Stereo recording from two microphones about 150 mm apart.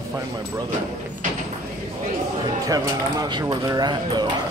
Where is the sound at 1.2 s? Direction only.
60° right (ahead or behind).